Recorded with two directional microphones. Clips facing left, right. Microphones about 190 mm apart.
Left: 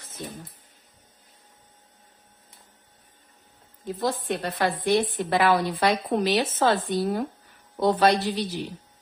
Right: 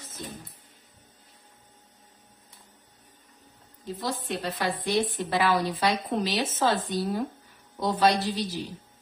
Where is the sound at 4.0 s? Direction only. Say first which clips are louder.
Left 5 dB; 50° left (ahead or behind).